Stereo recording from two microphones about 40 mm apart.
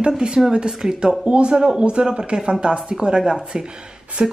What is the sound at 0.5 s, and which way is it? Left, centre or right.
Speech, centre.